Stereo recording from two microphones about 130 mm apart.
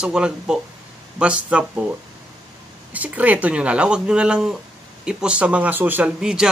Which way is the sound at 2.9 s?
10° right (ahead or behind).